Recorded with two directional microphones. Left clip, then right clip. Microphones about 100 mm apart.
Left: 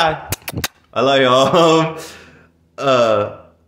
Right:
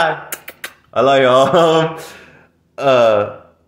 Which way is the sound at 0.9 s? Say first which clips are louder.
Right 2 dB; 15° left (ahead or behind).